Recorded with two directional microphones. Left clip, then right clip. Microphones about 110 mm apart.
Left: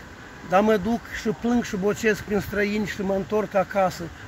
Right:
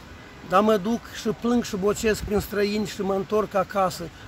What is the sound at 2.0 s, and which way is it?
Speech, 55° right (ahead or behind).